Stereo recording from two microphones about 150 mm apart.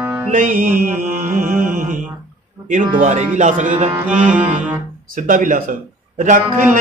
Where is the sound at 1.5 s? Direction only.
65° right (ahead or behind).